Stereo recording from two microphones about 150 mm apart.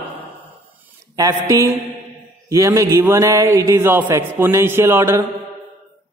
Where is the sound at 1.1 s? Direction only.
20° right (ahead or behind).